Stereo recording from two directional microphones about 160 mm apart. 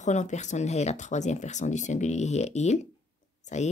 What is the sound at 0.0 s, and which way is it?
A woman's voice, 45° left (ahead or behind).